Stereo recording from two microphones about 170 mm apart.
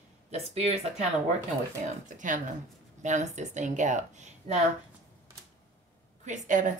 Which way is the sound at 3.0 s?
45° right (ahead or behind).